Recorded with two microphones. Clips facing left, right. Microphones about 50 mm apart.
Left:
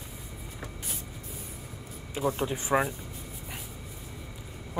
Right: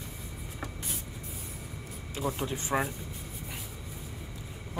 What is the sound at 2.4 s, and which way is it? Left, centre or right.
Speech, centre.